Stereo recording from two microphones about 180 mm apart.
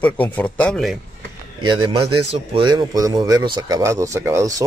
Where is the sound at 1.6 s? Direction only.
25° right (ahead or behind).